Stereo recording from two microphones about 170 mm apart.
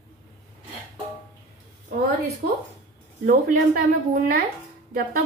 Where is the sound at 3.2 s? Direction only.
60° right (ahead or behind).